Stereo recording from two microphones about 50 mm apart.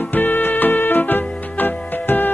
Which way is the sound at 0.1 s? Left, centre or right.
Left.